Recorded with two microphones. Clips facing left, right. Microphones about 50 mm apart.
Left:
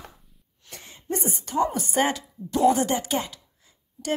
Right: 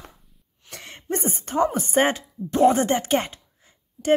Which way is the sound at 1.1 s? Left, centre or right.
Right.